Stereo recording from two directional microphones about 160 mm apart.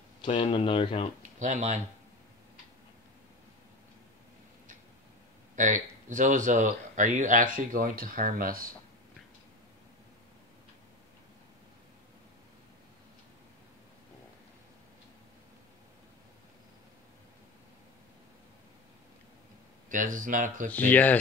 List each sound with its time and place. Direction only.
0.2 s speech: 35° left (ahead or behind)
1.4 s speech: 50° right (ahead or behind)
5.6 s speech: 50° right (ahead or behind)
19.9 s speech: 55° right (ahead or behind)
20.7 s speech: 10° left (ahead or behind)